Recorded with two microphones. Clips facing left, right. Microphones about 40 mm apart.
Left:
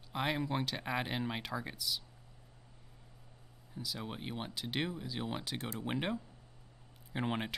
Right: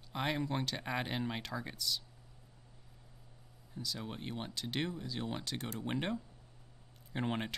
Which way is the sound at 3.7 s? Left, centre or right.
Centre.